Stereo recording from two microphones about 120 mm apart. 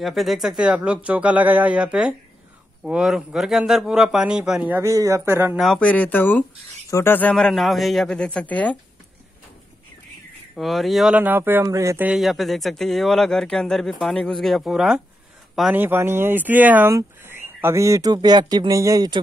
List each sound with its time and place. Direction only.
0.0 s speech: centre (ahead or behind)
4.7 s speech: 25° right (ahead or behind)
5.6 s speech: 5° left (ahead or behind)
10.5 s speech: centre (ahead or behind)
11.1 s speech: 15° right (ahead or behind)
12.1 s speech: centre (ahead or behind)
15.7 s speech: 15° right (ahead or behind)